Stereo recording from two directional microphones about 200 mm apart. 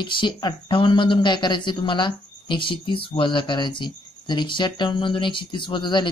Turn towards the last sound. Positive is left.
turn(degrees=25)  # may be behind; listen again after turning